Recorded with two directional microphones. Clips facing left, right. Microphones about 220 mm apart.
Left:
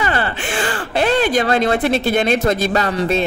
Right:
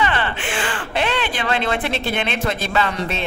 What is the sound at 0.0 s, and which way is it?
Speech, 40° left (ahead or behind).